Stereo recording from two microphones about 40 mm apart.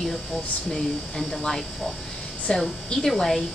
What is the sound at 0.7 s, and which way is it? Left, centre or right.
Speech, centre.